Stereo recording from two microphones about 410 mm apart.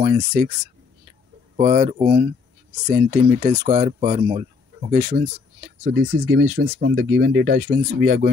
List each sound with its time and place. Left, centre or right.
0.0 s speech: centre
1.6 s speech: centre